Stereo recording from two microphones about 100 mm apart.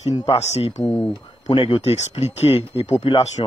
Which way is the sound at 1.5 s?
55° left (ahead or behind).